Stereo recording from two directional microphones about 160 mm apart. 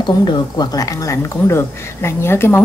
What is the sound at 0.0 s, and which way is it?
A woman's voice, 30° left (ahead or behind).